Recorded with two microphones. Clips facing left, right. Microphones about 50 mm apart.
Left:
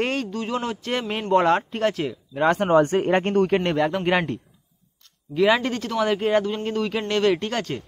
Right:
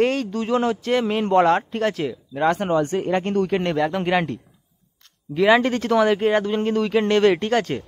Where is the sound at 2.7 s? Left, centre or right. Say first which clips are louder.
Left 3 dB; left.